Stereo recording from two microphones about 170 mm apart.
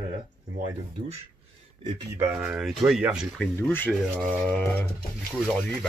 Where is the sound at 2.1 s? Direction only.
10° right (ahead or behind).